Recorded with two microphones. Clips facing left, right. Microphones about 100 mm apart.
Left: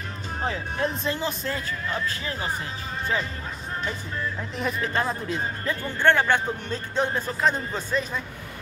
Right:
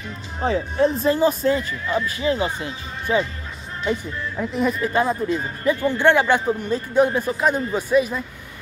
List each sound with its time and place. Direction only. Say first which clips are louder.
0.5 s speech: right 9 dB; 30° right (ahead or behind)
1.5 s a man's voice: right 8 dB; 5° right (ahead or behind)
4.4 s a man's voice: right 10 dB; centre (ahead or behind)